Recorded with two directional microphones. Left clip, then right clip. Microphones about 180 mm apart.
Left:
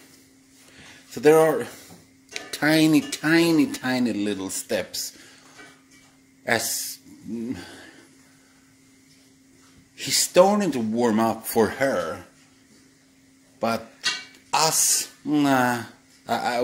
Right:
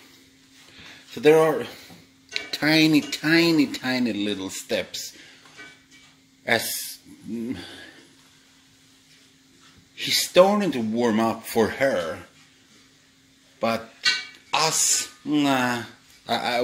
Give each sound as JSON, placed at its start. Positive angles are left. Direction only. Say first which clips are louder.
{"t": 1.1, "sound": "speech", "louder": "even", "side_deg": 15}
{"t": 6.5, "sound": "speech", "louder": "right 1 dB", "side_deg": 10}
{"t": 9.9, "sound": "speech", "louder": "right 1 dB", "side_deg": 15}
{"t": 13.6, "sound": "speech", "louder": "right 1 dB", "side_deg": 15}